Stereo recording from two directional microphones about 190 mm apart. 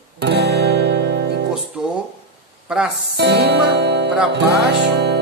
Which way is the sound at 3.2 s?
60° right (ahead or behind).